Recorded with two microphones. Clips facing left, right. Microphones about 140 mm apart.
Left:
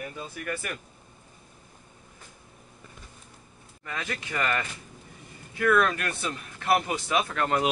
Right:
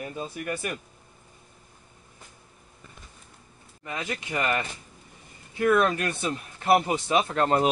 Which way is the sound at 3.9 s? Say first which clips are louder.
Right 2 dB; 20° right (ahead or behind).